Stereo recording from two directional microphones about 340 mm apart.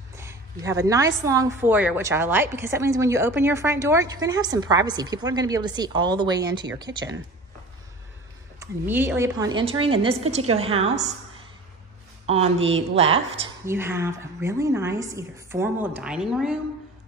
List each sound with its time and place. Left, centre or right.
0.1 s a woman's voice: centre
8.5 s a woman's voice: centre
12.3 s a woman's voice: centre